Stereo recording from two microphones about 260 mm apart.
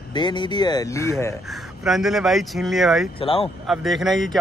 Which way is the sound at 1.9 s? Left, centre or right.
Centre.